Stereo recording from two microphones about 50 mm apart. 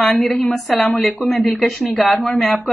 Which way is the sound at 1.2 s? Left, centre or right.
Centre.